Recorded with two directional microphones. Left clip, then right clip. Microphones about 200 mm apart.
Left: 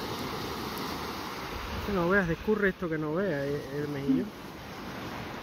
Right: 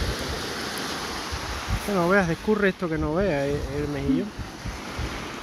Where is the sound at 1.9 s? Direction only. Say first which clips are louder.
Right 5 dB; 35° right (ahead or behind).